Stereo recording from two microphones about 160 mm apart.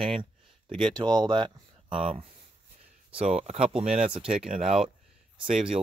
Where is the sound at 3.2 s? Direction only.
45° right (ahead or behind).